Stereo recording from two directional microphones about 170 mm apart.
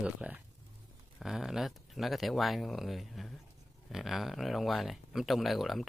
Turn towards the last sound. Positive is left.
turn(degrees=0)  # may be behind; listen again after turning